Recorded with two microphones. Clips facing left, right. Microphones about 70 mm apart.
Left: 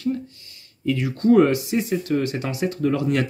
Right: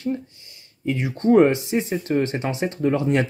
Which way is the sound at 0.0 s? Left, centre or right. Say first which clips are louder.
Left 1 dB; right.